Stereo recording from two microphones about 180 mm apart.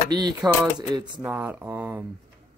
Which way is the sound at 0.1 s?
25° right (ahead or behind).